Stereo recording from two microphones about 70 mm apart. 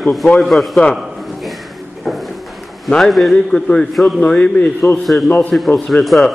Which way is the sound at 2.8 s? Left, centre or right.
Centre.